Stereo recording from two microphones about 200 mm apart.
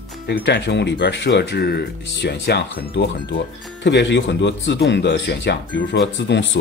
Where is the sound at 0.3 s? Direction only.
60° left (ahead or behind).